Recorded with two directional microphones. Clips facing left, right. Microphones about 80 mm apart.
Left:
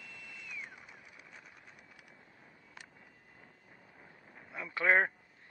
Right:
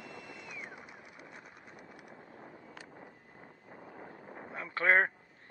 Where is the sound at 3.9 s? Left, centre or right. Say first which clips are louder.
Right 11 dB; right.